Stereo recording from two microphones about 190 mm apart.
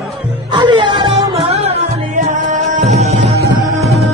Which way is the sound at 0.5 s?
25° right (ahead or behind).